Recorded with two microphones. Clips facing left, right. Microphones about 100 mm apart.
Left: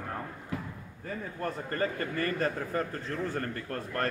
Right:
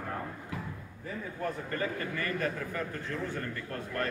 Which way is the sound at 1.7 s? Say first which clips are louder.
Left 2 dB; 45° left (ahead or behind).